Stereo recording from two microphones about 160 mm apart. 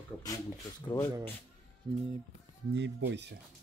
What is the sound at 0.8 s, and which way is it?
Speech, 20° left (ahead or behind).